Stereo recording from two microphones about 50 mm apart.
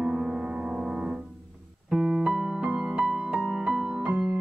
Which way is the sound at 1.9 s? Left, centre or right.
Centre.